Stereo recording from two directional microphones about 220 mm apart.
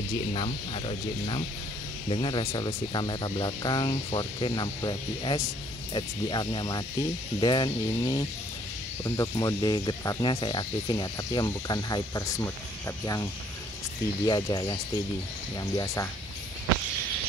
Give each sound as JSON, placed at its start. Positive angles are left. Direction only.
{"t": 0.3, "sound": "speech", "side_deg": 25}